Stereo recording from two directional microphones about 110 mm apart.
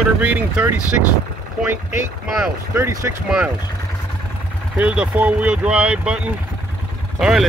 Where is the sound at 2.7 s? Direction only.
25° right (ahead or behind).